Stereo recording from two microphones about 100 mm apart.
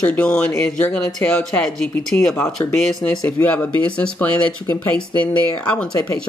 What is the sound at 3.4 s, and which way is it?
Speech, 15° left (ahead or behind).